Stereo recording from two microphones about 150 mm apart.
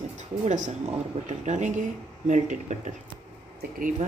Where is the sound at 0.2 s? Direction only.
50° right (ahead or behind).